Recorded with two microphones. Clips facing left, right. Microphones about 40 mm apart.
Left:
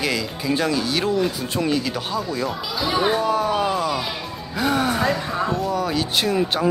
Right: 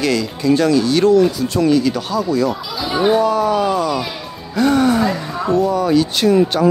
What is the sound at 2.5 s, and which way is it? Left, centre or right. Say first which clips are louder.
Speech: right 2 dB; centre.